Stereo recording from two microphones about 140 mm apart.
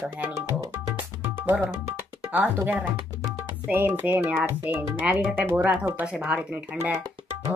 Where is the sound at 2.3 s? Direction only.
15° right (ahead or behind).